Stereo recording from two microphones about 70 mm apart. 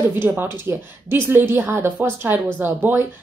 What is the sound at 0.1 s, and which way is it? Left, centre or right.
Speech, right.